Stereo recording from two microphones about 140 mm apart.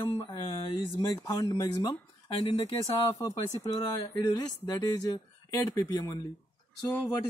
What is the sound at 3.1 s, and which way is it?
Speech, 25° left (ahead or behind).